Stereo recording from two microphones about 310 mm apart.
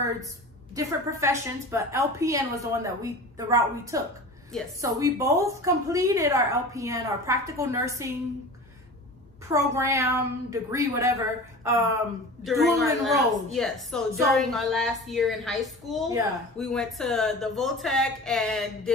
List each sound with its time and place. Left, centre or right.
0.7 s a woman's voice: centre
9.5 s a woman's voice: centre